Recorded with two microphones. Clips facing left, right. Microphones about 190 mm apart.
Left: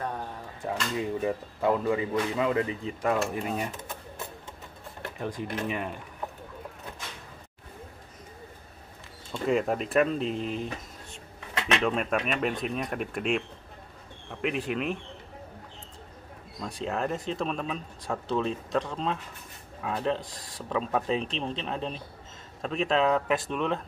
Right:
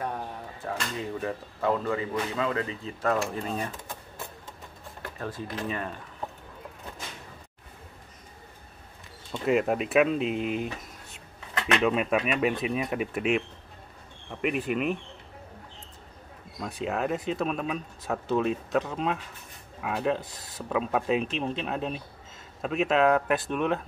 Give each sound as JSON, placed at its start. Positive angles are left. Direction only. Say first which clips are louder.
{"t": 0.6, "sound": "speech", "louder": "left 3 dB", "side_deg": 15}
{"t": 5.2, "sound": "speech", "louder": "left 2 dB", "side_deg": 15}
{"t": 9.3, "sound": "speech", "louder": "right 1 dB", "side_deg": -5}
{"t": 14.4, "sound": "speech", "louder": "right 2 dB", "side_deg": -5}
{"t": 16.6, "sound": "speech", "louder": "right 1 dB", "side_deg": -5}